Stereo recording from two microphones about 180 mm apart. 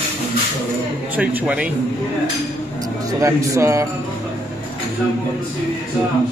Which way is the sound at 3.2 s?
15° right (ahead or behind).